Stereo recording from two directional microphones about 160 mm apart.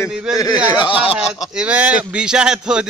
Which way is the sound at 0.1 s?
5° right (ahead or behind).